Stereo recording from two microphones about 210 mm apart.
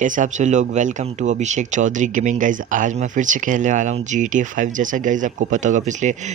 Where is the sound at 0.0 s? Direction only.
40° right (ahead or behind).